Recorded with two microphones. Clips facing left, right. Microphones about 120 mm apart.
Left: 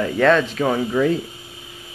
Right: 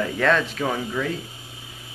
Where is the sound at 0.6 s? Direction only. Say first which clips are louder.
Left 7 dB; 25° left (ahead or behind).